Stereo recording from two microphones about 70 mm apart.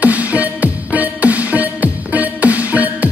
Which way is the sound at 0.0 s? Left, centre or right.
Right.